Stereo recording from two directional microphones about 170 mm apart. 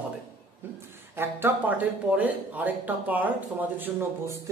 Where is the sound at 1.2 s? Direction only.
15° right (ahead or behind).